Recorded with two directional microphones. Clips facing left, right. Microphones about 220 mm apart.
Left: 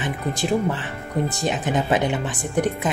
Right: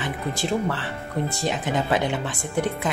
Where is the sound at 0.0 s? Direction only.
15° left (ahead or behind).